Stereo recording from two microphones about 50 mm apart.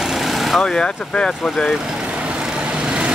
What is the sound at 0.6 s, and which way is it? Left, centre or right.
Speech, centre.